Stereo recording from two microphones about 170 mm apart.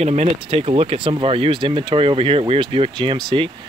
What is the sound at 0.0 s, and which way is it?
Speech, 40° right (ahead or behind).